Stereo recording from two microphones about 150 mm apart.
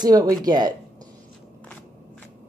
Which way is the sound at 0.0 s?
25° right (ahead or behind).